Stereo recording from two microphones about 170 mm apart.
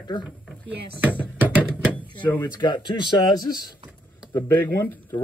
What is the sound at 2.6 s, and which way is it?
Speech, 25° left (ahead or behind).